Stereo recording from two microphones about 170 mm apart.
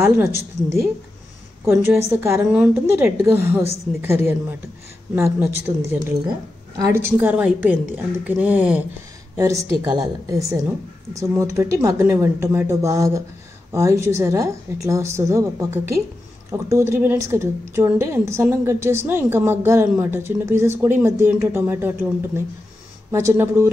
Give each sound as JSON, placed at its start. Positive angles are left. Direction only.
{"t": 0.0, "sound": "a woman's voice", "side_deg": -15}
{"t": 7.2, "sound": "a woman's voice", "side_deg": -5}
{"t": 9.4, "sound": "a woman's voice", "side_deg": -20}